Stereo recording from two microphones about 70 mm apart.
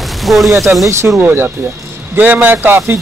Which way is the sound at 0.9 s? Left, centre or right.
Right.